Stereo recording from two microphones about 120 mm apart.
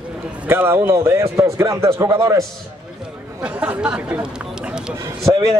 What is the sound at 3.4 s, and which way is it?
Speech, 10° right (ahead or behind).